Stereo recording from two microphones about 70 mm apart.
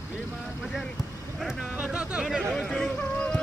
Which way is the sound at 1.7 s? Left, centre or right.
Centre.